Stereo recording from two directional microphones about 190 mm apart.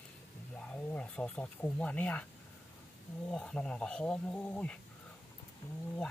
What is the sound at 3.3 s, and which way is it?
Speech, 5° left (ahead or behind).